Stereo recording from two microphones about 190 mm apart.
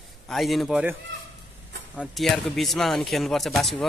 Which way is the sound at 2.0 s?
Centre (ahead or behind).